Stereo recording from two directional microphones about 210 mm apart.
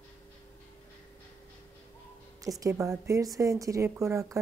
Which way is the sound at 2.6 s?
15° right (ahead or behind).